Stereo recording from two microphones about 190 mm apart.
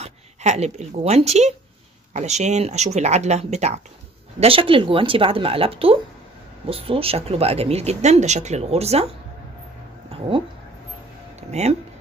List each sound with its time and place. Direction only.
0.0 s speech: 35° right (ahead or behind)
10.3 s speech: 30° right (ahead or behind)
11.6 s speech: 35° right (ahead or behind)